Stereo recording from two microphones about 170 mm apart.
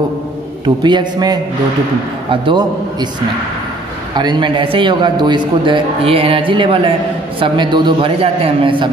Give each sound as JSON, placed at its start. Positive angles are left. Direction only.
{"t": 0.8, "sound": "a man's voice", "side_deg": -25}
{"t": 2.4, "sound": "a man's voice", "side_deg": -25}
{"t": 4.1, "sound": "a man's voice", "side_deg": -25}